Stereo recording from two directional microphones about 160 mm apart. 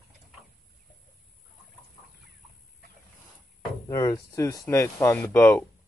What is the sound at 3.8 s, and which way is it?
Speech, 20° left (ahead or behind).